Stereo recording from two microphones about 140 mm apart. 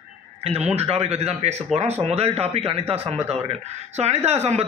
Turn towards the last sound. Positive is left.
turn(degrees=-50)  # may be behind; listen again after turning